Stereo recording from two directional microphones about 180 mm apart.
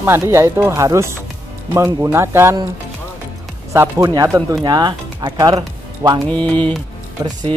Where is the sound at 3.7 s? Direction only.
15° right (ahead or behind).